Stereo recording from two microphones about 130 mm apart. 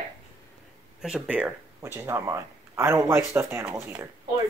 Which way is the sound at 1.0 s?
5° right (ahead or behind).